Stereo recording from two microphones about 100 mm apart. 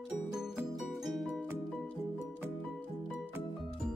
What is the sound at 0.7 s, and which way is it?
Music, centre (ahead or behind).